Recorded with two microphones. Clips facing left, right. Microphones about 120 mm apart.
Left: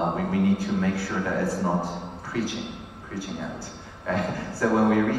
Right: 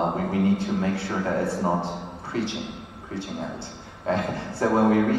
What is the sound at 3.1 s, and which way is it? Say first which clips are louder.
A man's voice: right 1 dB; 25° right (ahead or behind).